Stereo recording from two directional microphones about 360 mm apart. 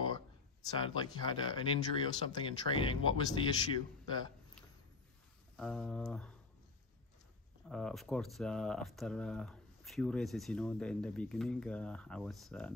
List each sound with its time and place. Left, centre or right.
0.0 s speech: centre
5.6 s speech: centre
7.6 s speech: centre